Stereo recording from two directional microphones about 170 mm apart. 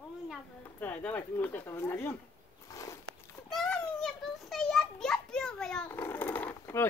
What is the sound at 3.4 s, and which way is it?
Children playing, 5° left (ahead or behind).